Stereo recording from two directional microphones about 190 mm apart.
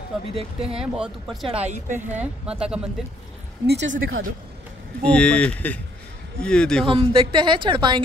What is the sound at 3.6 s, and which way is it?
Speech, 70° right (ahead or behind).